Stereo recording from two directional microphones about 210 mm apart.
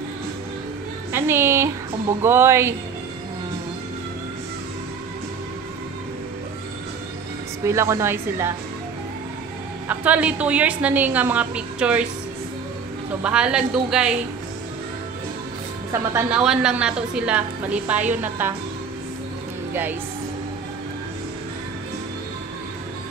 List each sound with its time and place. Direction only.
1.1 s music: 10° right (ahead or behind)
2.2 s a woman's voice: 10° right (ahead or behind)
7.6 s a woman's voice: 15° right (ahead or behind)
9.8 s a woman's voice: 5° right (ahead or behind)
13.2 s a woman's voice: 5° right (ahead or behind)
15.9 s a woman's voice: 15° right (ahead or behind)
19.7 s speech: 10° right (ahead or behind)